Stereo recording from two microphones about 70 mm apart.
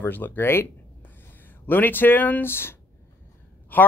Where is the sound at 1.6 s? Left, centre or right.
Left.